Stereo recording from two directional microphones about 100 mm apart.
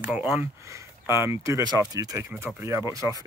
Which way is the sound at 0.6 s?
30° right (ahead or behind).